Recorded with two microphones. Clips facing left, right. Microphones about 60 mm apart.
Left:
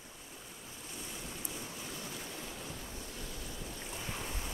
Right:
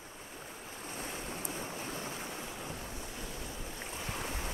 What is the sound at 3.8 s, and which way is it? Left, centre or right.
Boat, right.